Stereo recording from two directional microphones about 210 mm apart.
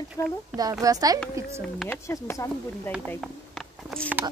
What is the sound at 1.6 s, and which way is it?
Speech, 5° left (ahead or behind).